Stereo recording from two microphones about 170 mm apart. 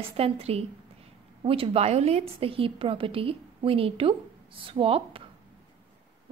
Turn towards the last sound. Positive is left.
turn(degrees=-35)  # may be behind; listen again after turning